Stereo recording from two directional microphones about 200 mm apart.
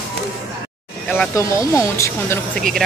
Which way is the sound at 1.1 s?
10° left (ahead or behind).